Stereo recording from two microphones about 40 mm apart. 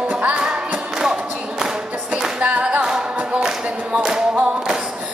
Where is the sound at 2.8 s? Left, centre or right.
Centre.